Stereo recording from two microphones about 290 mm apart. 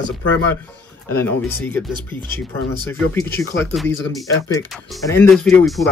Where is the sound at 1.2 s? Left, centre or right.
Centre.